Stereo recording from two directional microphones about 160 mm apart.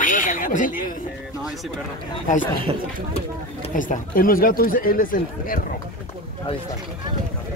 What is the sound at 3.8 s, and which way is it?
Speech, 60° left (ahead or behind).